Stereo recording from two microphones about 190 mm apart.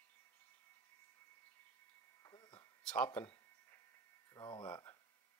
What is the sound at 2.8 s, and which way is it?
Speech, 5° left (ahead or behind).